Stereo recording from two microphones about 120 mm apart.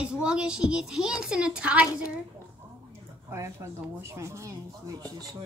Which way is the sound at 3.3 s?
25° right (ahead or behind).